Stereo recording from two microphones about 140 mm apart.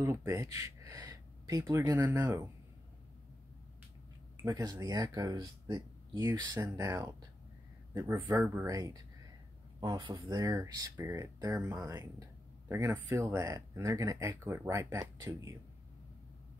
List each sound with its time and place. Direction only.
0.0 s speech: 20° right (ahead or behind)
4.5 s a man's voice: 25° right (ahead or behind)